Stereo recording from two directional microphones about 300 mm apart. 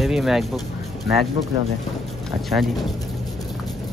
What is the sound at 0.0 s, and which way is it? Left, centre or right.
Speech, centre.